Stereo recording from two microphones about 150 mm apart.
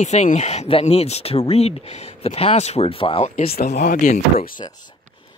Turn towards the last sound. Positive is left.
turn(degrees=50)  # may be behind; listen again after turning